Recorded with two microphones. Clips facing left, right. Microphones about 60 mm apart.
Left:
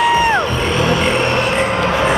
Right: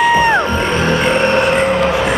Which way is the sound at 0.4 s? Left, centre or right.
Right.